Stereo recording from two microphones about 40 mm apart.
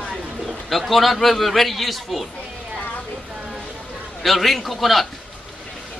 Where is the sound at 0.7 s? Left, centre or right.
Centre.